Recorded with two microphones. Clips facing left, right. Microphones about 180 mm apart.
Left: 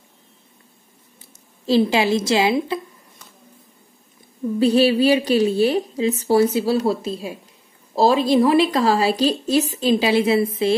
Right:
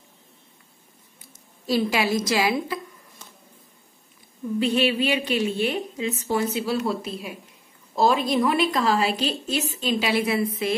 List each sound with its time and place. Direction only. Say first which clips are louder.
1.2 s a woman's voice: left 6 dB; 25° left (ahead or behind)
4.6 s a woman's voice: left 6 dB; 35° left (ahead or behind)